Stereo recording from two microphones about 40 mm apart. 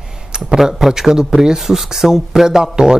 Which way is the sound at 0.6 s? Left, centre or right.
Centre.